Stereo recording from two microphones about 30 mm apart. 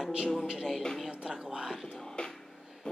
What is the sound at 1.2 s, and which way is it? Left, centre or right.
Speech, right.